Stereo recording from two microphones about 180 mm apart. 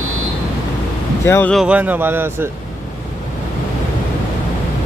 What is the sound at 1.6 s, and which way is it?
Speech, 5° right (ahead or behind).